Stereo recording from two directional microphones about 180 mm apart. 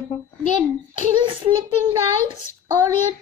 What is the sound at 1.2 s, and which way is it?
Speech, 25° right (ahead or behind).